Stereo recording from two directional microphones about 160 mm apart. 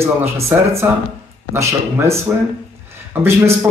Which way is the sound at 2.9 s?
15° right (ahead or behind).